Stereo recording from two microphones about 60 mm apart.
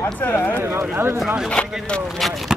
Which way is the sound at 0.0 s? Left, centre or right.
Left.